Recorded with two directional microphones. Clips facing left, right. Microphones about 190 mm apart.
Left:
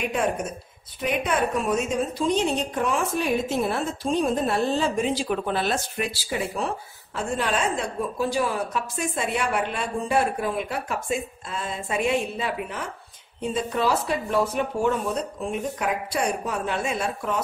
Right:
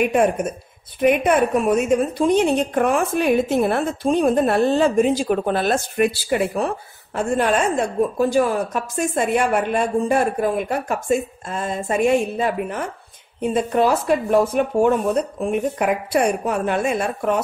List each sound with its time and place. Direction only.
0.1 s a woman's voice: 55° right (ahead or behind)